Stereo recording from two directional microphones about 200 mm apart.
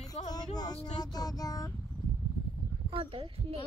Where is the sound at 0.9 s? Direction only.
20° left (ahead or behind).